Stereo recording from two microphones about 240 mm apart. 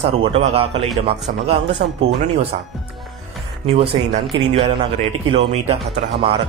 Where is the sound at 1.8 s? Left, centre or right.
Right.